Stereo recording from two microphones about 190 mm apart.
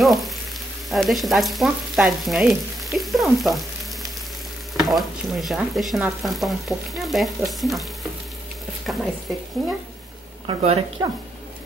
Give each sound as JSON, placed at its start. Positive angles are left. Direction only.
{"t": 0.0, "sound": "frying", "side_deg": 0}
{"t": 4.7, "sound": "speech", "side_deg": 0}
{"t": 10.4, "sound": "speech", "side_deg": -35}
{"t": 11.0, "sound": "speech", "side_deg": -20}